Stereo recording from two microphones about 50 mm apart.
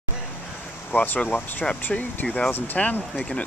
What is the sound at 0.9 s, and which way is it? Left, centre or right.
Speech, left.